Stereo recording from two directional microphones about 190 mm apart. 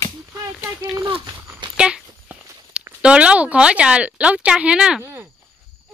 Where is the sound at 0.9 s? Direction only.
25° right (ahead or behind).